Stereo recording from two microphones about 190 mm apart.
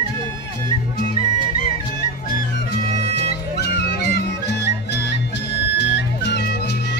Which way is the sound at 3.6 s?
60° left (ahead or behind).